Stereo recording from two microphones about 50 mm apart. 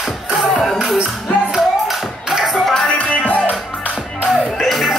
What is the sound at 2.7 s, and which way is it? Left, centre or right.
Music, centre.